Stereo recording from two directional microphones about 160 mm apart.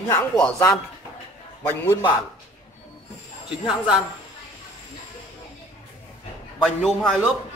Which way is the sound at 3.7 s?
5° right (ahead or behind).